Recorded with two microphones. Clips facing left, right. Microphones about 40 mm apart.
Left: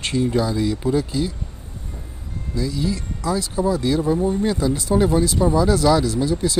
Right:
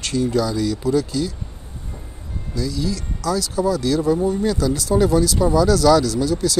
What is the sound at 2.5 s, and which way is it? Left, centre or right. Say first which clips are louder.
Speech: even; left.